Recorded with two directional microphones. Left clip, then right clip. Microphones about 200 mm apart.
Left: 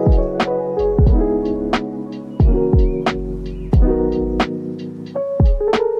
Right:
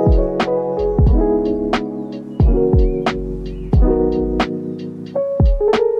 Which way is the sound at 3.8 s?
35° left (ahead or behind).